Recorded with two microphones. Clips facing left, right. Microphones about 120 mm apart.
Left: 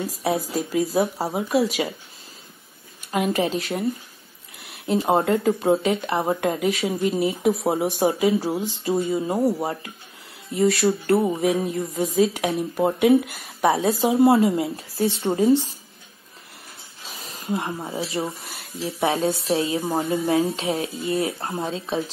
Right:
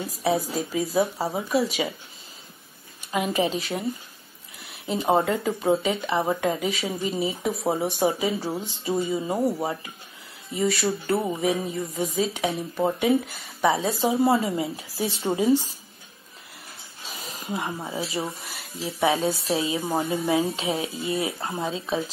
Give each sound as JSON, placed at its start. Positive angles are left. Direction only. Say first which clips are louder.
{"t": 0.0, "sound": "a woman's voice", "louder": "even", "side_deg": 0}
{"t": 3.1, "sound": "a woman's voice", "louder": "left 2 dB", "side_deg": 0}
{"t": 17.2, "sound": "a sound", "louder": "left 3 dB", "side_deg": 0}
{"t": 18.0, "sound": "a woman's voice", "louder": "left 2 dB", "side_deg": 0}